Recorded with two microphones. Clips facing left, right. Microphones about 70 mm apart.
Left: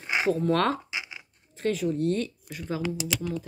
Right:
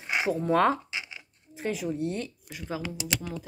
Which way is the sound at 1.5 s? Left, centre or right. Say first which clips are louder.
Left 4 dB; centre.